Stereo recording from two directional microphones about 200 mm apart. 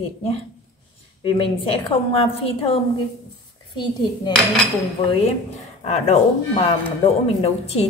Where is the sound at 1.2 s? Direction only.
25° left (ahead or behind).